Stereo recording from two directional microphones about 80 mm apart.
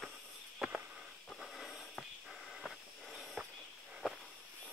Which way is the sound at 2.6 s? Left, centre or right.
Centre.